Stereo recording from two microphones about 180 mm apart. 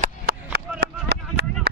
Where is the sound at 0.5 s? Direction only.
70° right (ahead or behind).